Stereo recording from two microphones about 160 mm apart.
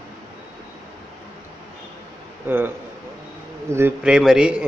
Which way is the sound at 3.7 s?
10° right (ahead or behind).